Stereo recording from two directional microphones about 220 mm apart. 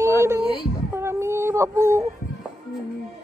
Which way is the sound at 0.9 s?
10° right (ahead or behind).